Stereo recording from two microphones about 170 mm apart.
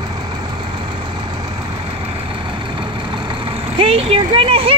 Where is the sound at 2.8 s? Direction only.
30° right (ahead or behind).